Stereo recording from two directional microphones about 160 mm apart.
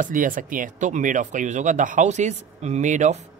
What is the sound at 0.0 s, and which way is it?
Speech, 55° right (ahead or behind).